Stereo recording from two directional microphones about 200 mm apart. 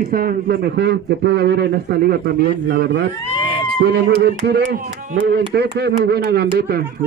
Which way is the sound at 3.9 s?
55° right (ahead or behind).